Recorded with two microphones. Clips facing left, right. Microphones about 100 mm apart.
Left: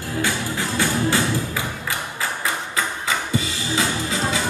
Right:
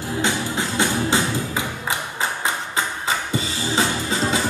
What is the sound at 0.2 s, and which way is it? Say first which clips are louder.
Music: right 1 dB; 20° right (ahead or behind).